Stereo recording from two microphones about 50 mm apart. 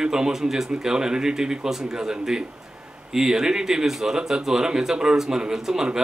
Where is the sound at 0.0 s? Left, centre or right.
Centre.